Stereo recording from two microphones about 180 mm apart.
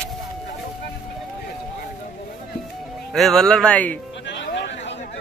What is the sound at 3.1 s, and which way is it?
Speech, centre (ahead or behind).